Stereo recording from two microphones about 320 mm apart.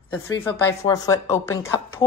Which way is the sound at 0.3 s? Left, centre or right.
Centre.